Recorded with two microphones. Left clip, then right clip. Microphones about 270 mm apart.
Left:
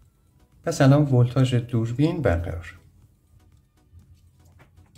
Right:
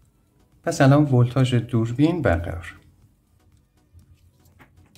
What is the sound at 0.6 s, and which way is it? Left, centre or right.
Speech, centre.